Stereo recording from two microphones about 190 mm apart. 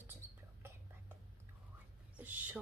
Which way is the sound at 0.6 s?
10° right (ahead or behind).